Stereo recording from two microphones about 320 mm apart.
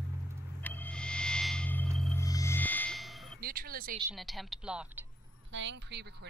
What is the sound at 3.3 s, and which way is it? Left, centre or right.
Music, right.